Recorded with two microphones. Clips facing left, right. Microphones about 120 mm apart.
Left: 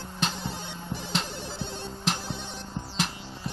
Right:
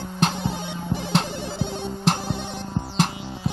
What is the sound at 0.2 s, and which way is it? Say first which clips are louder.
Music: right 8 dB; 65° right (ahead or behind).